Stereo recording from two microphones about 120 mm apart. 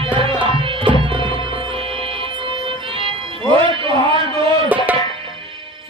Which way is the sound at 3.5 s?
45° right (ahead or behind).